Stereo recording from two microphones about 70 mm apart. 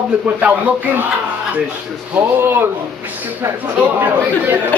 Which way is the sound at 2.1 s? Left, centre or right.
Right.